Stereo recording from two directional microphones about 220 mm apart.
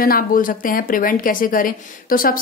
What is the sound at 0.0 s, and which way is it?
A woman's voice, 40° left (ahead or behind).